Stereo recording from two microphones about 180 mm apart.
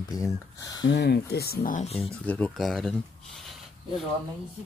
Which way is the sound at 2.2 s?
5° left (ahead or behind).